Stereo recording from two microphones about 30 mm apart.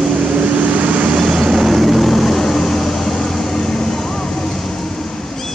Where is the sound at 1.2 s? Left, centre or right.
Centre.